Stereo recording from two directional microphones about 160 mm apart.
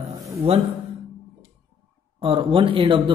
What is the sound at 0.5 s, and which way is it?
Speech, 40° right (ahead or behind).